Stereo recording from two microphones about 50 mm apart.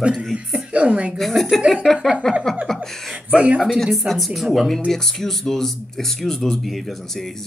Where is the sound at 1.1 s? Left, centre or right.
Centre.